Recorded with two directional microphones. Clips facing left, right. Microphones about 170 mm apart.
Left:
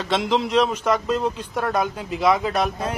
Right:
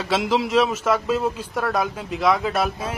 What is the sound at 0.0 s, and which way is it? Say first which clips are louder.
A man's voice: even; 5° right (ahead or behind).